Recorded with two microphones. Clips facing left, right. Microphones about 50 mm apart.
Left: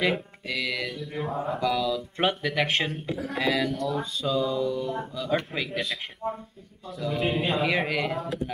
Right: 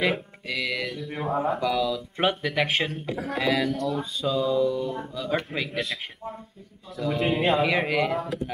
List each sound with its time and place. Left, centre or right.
0.0 s music: centre
1.5 s speech: centre
3.1 s speech: right
3.3 s speech: centre
6.2 s speech: left
6.9 s speech: centre